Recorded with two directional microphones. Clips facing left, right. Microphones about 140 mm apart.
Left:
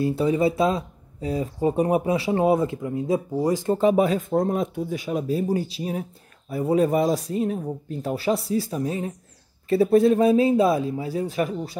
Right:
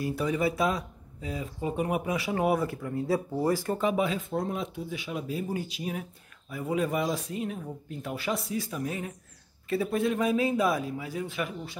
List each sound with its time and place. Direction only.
0.0 s speech: 25° left (ahead or behind)
3.7 s speech: 35° left (ahead or behind)